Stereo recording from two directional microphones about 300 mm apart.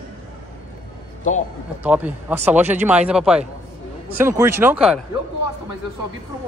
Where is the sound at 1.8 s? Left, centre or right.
Centre.